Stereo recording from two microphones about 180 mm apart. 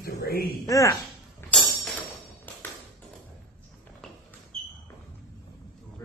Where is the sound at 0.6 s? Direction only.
20° left (ahead or behind).